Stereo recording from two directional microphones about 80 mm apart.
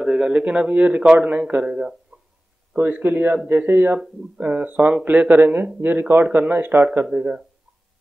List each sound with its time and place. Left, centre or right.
0.0 s a man's voice: centre